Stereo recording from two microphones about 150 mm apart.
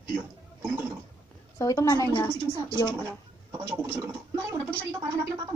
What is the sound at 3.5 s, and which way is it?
Speech, 20° right (ahead or behind).